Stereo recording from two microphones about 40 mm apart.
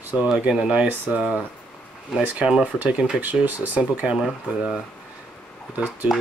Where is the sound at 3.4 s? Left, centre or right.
Right.